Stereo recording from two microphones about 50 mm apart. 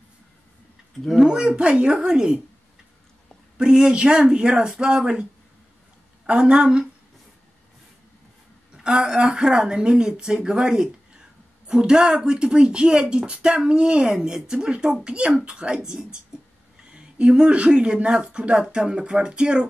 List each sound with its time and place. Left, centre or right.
1.1 s speech: centre
3.5 s speech: centre
6.2 s speech: centre
8.8 s speech: centre